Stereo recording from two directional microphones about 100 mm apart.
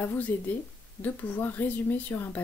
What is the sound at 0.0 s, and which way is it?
Speech, 20° left (ahead or behind).